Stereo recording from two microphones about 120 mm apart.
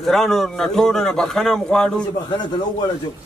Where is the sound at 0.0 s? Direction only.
Centre (ahead or behind).